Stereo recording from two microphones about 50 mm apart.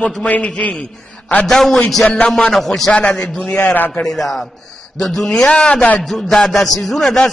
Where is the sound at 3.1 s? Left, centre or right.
Centre.